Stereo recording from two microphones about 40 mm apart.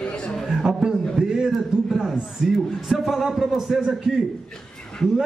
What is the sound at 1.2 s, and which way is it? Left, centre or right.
A man's voice, centre.